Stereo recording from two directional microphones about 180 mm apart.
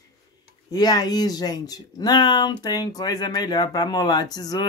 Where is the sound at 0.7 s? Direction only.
20° left (ahead or behind).